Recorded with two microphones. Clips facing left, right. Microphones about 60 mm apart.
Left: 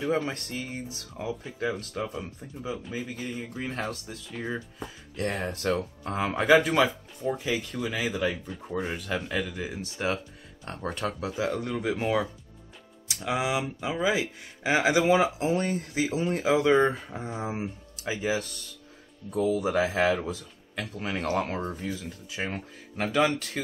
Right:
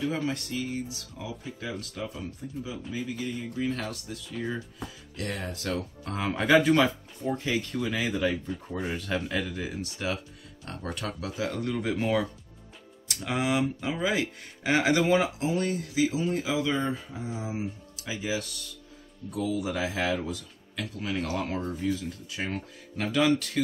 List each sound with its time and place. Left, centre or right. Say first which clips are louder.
0.0 s speech: left 2 dB; left
4.3 s speech: even; centre
5.1 s speech: left 5 dB; left
5.8 s speech: left 3 dB; left
9.8 s speech: left 6 dB; left
15.4 s speech: left 1 dB; left